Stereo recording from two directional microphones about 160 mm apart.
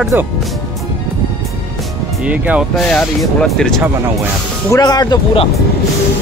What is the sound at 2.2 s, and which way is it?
Speech, 5° right (ahead or behind).